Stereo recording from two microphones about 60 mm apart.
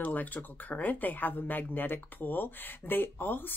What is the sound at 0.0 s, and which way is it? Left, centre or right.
Speech, left.